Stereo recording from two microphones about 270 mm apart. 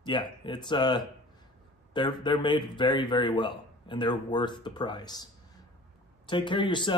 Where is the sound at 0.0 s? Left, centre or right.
Centre.